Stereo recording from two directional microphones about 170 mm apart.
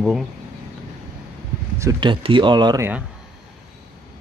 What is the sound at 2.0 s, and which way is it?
Speech, 30° right (ahead or behind).